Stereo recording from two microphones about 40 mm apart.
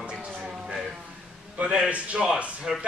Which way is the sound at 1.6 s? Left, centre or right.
Right.